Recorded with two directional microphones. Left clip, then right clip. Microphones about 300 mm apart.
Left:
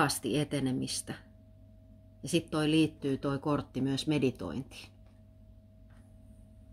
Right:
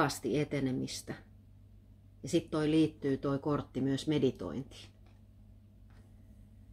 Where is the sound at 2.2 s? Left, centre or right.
Left.